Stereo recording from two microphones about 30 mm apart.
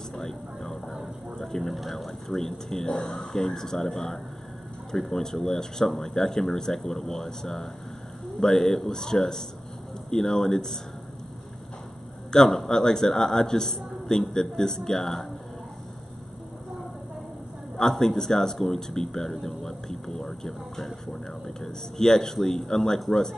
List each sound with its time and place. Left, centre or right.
0.3 s vehicle: centre
0.8 s vehicle: centre
1.5 s speech: centre
2.2 s a man's voice: centre
12.4 s a man's voice: centre
17.7 s a man's voice: centre
21.5 s a man's voice: centre